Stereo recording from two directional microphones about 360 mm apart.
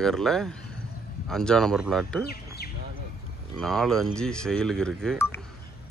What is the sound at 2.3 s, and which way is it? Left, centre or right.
Bird, left.